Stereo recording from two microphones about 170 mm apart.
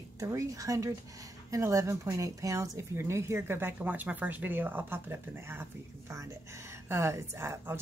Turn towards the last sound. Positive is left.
turn(degrees=-15)  # may be behind; listen again after turning